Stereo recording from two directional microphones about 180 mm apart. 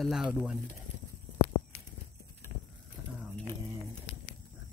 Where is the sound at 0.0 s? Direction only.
5° right (ahead or behind).